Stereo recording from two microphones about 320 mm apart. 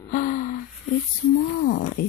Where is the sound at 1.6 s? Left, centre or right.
Left.